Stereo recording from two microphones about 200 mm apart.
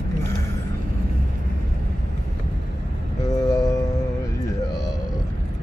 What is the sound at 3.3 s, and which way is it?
Vehicle, 20° left (ahead or behind).